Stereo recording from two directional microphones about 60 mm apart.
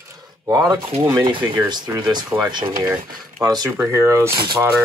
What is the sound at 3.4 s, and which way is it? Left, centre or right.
Speech, right.